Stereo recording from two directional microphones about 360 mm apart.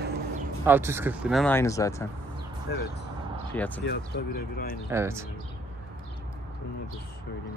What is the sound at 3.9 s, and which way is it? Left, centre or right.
Speech, left.